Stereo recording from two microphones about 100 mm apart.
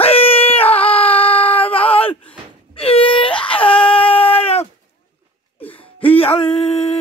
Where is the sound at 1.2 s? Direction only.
65° left (ahead or behind).